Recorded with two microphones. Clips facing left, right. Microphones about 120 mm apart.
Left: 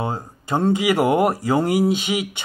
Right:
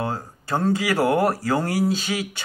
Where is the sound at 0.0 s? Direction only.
20° left (ahead or behind).